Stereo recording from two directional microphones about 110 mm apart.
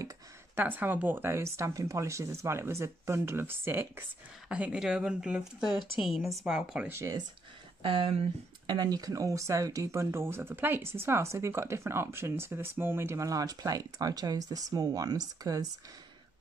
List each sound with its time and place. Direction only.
0.6 s speech: 15° right (ahead or behind)
4.5 s a woman's voice: 10° right (ahead or behind)
6.9 s speech: 25° right (ahead or behind)
7.8 s speech: 50° right (ahead or behind)
8.6 s speech: 40° right (ahead or behind)